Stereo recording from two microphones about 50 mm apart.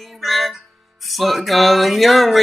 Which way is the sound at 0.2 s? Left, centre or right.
Centre.